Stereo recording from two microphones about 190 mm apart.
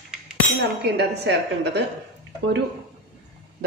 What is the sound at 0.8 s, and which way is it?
Speech, 60° right (ahead or behind).